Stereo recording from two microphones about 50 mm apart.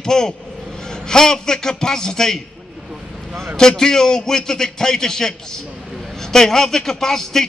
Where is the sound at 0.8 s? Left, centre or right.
Centre.